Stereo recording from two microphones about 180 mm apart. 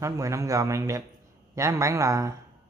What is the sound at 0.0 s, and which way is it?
Speech, 15° right (ahead or behind).